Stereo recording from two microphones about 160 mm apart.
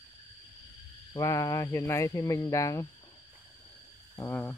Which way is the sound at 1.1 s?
20° left (ahead or behind).